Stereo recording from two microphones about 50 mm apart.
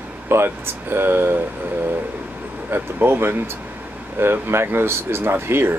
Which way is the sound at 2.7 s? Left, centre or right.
Right.